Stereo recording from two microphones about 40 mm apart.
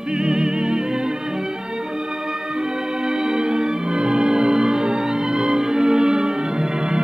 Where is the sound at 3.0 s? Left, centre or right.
Centre.